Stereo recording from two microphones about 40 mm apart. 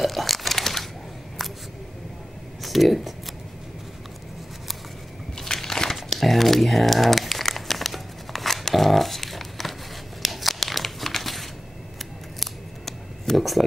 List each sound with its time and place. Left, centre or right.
0.0 s crumpling: centre
2.6 s speech: centre
5.4 s a sound: centre
5.9 s crumpling: centre
12.4 s scissors: centre